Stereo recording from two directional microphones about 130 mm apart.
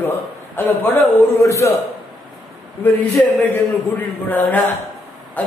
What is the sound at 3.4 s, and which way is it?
A man's voice, 15° left (ahead or behind).